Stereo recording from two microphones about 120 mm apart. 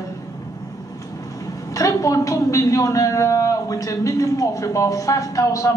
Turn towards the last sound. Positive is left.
turn(degrees=30)  # may be behind; listen again after turning